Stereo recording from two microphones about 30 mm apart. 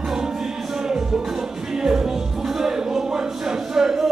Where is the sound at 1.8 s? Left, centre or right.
Centre.